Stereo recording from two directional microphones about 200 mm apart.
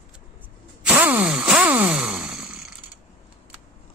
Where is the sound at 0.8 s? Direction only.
10° right (ahead or behind).